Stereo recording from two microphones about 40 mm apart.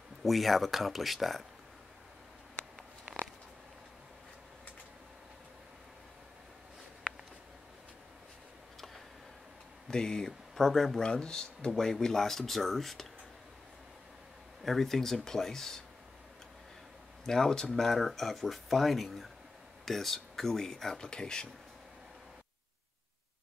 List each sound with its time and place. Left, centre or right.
0.2 s speech: centre
3.1 s a sound: right
9.8 s speech: centre
14.6 s speech: centre
17.3 s speech: centre